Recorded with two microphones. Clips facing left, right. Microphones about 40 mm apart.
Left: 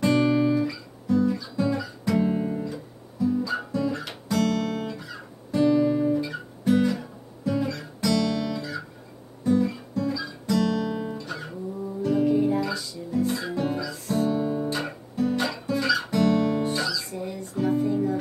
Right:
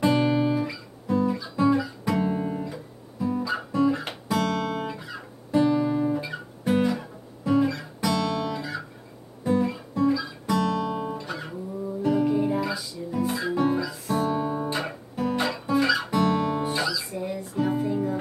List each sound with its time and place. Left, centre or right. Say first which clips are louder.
0.0 s guitar: left 1 dB; centre
13.7 s music: right 3 dB; centre
13.9 s music: even; centre
14.2 s guitar: left 3 dB; centre